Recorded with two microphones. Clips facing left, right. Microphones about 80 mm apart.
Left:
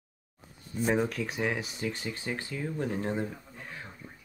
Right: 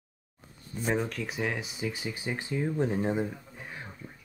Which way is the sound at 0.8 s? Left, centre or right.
Centre.